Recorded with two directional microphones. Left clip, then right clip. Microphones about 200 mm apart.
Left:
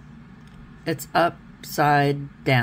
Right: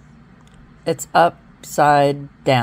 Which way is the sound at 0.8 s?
20° right (ahead or behind).